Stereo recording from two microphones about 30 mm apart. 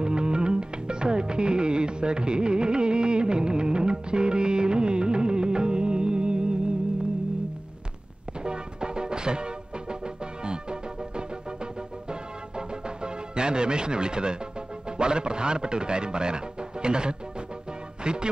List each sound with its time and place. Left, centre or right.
0.0 s music: right
8.5 s music: right
14.9 s a man's voice: right